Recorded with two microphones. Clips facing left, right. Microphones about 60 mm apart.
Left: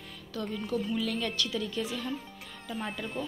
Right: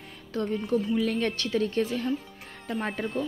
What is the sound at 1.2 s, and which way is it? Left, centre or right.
Speech, right.